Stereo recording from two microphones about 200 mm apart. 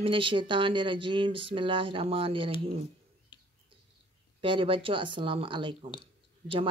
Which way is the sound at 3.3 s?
20° left (ahead or behind).